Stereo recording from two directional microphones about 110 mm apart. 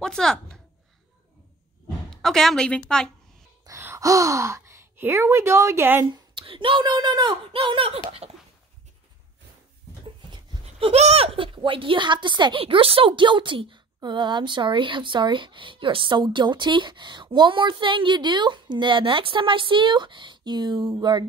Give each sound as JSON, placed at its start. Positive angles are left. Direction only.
{"t": 0.0, "sound": "speech", "side_deg": 5}
{"t": 2.0, "sound": "a woman's voice", "side_deg": 5}
{"t": 3.6, "sound": "speech", "side_deg": -25}
{"t": 6.3, "sound": "speech", "side_deg": -55}
{"t": 7.5, "sound": "speech", "side_deg": -55}
{"t": 8.2, "sound": "a sound", "side_deg": -80}
{"t": 10.6, "sound": "speech", "side_deg": -70}